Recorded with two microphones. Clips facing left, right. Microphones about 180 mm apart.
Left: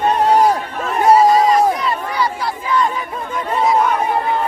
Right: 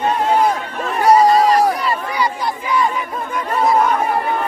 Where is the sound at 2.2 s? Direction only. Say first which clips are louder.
Even; 15° right (ahead or behind).